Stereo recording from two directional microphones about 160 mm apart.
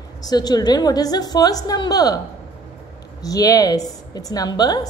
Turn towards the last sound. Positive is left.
turn(degrees=25)  # may be behind; listen again after turning